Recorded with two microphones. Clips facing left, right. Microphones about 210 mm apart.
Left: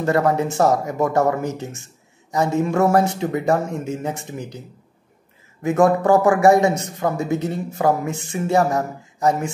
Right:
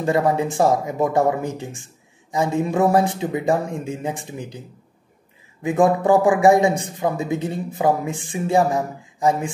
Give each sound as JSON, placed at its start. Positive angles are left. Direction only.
{"t": 0.0, "sound": "speech", "side_deg": -15}
{"t": 5.6, "sound": "speech", "side_deg": -15}